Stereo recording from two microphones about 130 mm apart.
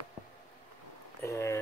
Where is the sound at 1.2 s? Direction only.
20° left (ahead or behind).